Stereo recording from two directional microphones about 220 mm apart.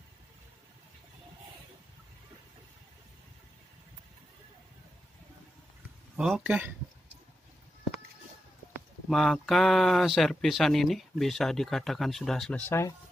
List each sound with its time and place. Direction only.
6.1 s speech: 5° right (ahead or behind)
9.1 s speech: centre (ahead or behind)